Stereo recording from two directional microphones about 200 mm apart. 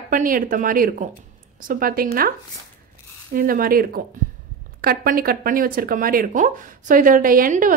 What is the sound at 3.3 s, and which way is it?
Speech, 45° right (ahead or behind).